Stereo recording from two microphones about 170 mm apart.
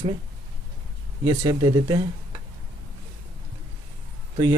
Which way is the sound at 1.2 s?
30° right (ahead or behind).